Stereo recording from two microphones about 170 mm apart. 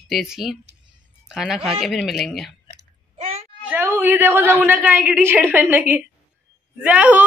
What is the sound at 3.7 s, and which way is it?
A woman's voice, 15° right (ahead or behind).